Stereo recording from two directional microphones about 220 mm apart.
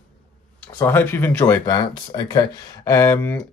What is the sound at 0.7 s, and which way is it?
Speech, 10° left (ahead or behind).